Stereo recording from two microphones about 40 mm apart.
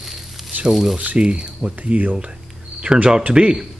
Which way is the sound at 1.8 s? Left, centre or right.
Right.